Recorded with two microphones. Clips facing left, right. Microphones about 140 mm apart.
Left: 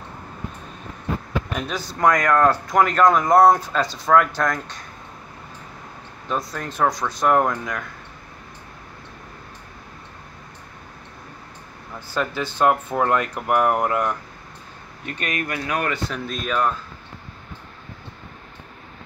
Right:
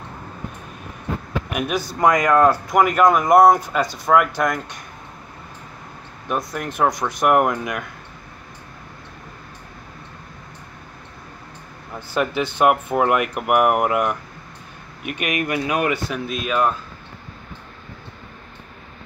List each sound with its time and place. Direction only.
1.5 s speech: 10° right (ahead or behind)
6.2 s speech: 15° right (ahead or behind)
12.1 s speech: 20° right (ahead or behind)